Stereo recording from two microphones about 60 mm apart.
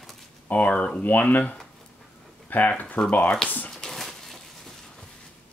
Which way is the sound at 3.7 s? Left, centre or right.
Centre.